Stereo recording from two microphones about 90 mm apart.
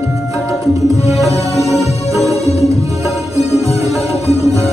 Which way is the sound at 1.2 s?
Centre (ahead or behind).